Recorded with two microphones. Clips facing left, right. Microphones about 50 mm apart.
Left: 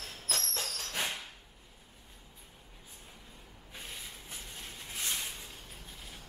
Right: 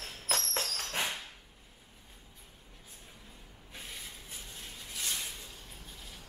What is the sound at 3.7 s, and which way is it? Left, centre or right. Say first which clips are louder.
Rub: even; centre.